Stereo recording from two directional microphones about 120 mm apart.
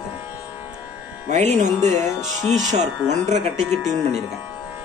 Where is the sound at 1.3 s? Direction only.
75° right (ahead or behind).